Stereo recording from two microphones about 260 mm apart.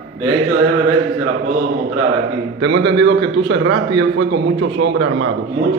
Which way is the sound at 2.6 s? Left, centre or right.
Right.